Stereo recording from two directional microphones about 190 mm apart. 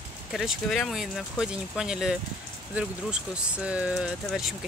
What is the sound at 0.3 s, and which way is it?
Speech, centre (ahead or behind).